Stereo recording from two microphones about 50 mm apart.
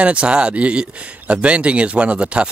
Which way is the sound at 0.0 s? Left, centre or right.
Right.